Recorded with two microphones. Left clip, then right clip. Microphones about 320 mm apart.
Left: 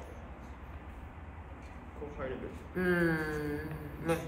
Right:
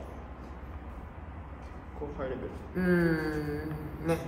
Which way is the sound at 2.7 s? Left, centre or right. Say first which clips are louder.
Right 2 dB; centre.